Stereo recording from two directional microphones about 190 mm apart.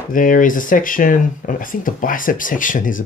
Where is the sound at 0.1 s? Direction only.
45° left (ahead or behind).